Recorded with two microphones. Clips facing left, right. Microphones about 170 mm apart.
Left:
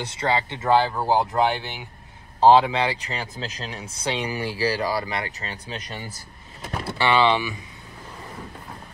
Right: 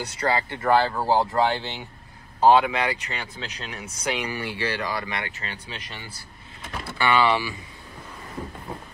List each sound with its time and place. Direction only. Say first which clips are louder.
0.0 s speech: left 1 dB; 25° left (ahead or behind)
2.4 s speech: left 2 dB; 30° left (ahead or behind)
7.0 s speech: left 1 dB; 25° left (ahead or behind)